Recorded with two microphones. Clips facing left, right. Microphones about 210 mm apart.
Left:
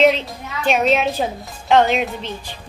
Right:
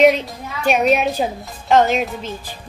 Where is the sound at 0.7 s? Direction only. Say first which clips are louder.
Right 1 dB; 10° right (ahead or behind).